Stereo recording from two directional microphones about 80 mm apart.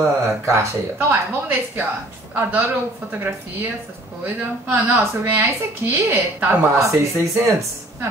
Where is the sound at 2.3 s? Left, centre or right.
Right.